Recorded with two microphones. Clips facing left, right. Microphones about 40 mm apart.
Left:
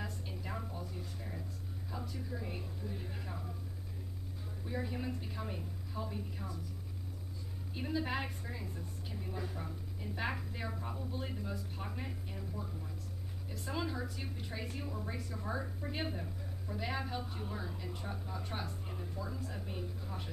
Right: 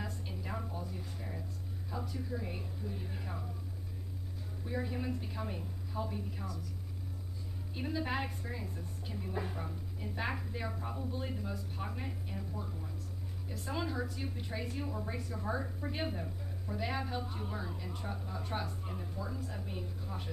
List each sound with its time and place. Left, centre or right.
0.0 s a sound: centre
1.9 s a woman's voice: centre
4.6 s a woman's voice: centre
7.7 s a woman's voice: centre
9.3 s speech: right
9.7 s a woman's voice: centre
13.5 s a woman's voice: centre